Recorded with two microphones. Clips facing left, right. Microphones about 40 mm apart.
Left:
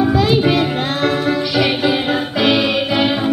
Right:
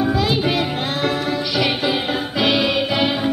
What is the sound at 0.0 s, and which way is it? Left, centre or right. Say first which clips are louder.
Music: left 5 dB; centre.